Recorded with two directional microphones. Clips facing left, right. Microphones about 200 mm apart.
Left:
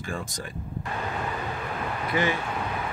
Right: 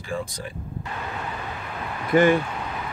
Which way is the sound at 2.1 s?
45° right (ahead or behind).